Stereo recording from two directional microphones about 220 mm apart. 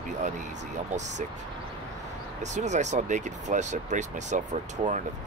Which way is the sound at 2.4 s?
30° right (ahead or behind).